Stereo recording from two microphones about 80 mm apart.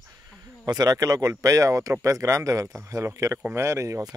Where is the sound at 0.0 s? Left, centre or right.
Right.